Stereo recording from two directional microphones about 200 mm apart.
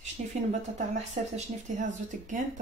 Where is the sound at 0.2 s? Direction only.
40° right (ahead or behind).